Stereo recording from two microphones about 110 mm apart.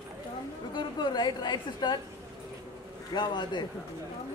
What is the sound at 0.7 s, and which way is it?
A woman's voice, 40° left (ahead or behind).